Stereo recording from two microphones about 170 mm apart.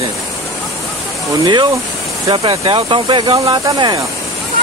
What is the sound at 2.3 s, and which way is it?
Speech, 30° right (ahead or behind).